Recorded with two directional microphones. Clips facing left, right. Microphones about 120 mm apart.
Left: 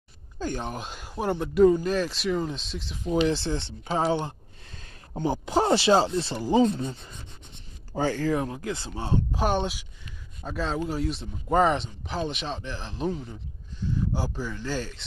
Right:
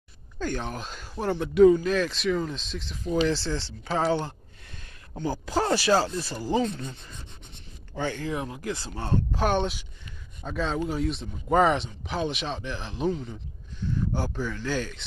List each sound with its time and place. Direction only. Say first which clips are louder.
0.4 s speech: even; 10° left (ahead or behind)
7.9 s speech: left 5 dB; 40° left (ahead or behind); by 15.0 s 5° left (ahead or behind)